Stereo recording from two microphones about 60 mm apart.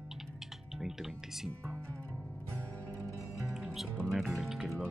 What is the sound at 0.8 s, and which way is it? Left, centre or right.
Speech, centre.